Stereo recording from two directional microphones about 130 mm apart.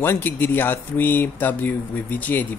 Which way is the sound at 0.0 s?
15° left (ahead or behind).